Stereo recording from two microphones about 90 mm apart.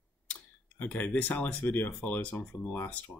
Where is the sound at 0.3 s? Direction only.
20° left (ahead or behind).